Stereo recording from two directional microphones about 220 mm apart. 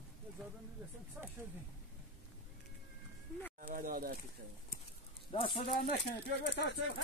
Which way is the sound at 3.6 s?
40° right (ahead or behind).